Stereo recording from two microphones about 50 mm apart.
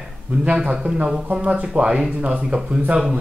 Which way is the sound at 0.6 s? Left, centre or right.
Right.